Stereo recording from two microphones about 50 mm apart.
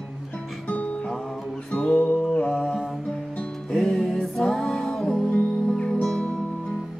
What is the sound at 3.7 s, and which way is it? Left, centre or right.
Music, centre.